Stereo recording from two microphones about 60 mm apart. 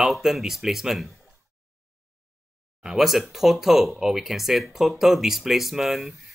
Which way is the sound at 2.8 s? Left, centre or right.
Centre.